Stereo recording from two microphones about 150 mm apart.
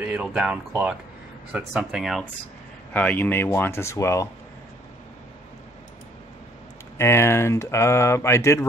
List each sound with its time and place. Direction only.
0.0 s speech: 10° right (ahead or behind)
2.9 s speech: 10° left (ahead or behind)
7.0 s speech: 15° left (ahead or behind)